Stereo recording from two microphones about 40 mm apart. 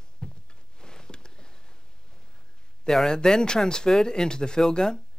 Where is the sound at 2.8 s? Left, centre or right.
Centre.